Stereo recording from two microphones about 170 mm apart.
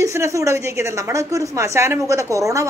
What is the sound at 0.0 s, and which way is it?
Speech, 15° right (ahead or behind).